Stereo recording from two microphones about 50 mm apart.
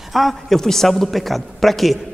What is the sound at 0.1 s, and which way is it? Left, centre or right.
A woman's voice, centre.